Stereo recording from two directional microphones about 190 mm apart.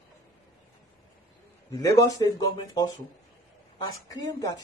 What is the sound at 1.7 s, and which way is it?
Speech, 15° left (ahead or behind).